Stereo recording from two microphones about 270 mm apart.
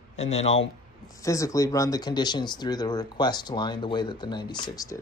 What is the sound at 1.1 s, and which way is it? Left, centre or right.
Speech, centre.